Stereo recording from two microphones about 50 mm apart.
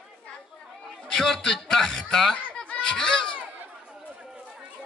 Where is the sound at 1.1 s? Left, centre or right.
Centre.